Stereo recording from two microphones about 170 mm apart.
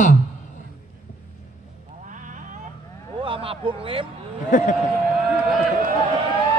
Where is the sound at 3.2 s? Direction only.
30° right (ahead or behind).